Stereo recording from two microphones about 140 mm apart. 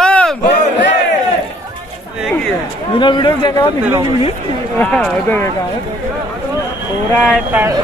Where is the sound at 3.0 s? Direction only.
35° left (ahead or behind).